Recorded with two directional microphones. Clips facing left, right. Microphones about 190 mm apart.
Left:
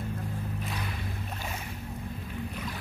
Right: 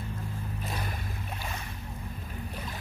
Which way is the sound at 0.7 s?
40° right (ahead or behind).